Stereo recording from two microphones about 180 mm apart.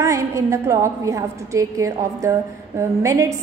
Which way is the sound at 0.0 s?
15° right (ahead or behind).